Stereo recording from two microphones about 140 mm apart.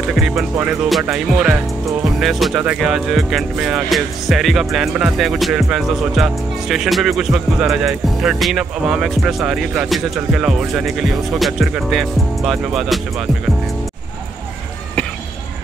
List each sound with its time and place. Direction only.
0.1 s speech: 5° right (ahead or behind)